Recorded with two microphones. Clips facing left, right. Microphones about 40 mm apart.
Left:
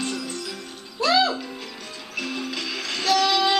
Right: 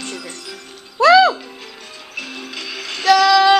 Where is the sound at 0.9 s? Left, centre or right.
Right.